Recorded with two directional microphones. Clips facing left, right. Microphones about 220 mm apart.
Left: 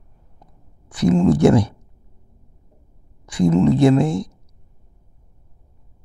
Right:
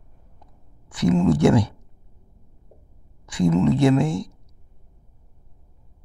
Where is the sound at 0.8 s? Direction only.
35° left (ahead or behind).